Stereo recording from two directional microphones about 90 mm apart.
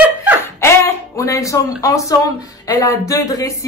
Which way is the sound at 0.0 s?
20° right (ahead or behind).